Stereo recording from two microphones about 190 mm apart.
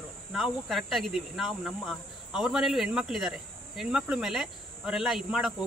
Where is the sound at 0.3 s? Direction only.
Centre (ahead or behind).